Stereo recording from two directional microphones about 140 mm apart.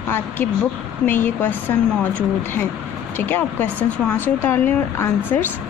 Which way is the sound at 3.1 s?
15° left (ahead or behind).